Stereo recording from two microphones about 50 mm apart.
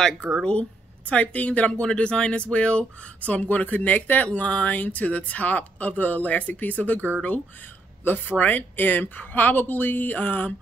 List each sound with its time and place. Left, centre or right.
0.5 s speech: left